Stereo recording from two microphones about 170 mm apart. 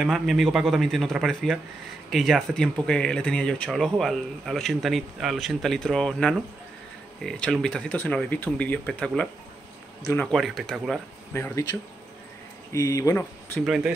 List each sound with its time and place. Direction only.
0.0 s speech: centre (ahead or behind)
11.3 s speech: 15° left (ahead or behind)
12.7 s speech: 20° left (ahead or behind)
13.7 s speech: centre (ahead or behind)